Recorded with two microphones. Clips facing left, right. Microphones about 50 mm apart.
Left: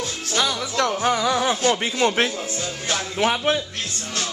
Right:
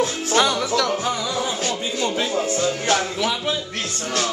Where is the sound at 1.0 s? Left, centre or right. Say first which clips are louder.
Left 4 dB; left.